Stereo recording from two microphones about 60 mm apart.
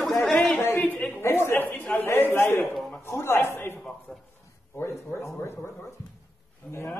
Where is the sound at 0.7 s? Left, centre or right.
Left.